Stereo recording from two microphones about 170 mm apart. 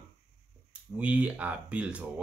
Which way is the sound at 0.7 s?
10° right (ahead or behind).